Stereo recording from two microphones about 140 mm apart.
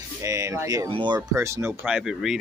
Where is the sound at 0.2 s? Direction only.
20° right (ahead or behind).